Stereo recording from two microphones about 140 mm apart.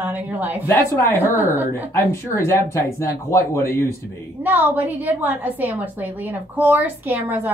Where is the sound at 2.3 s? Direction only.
15° left (ahead or behind).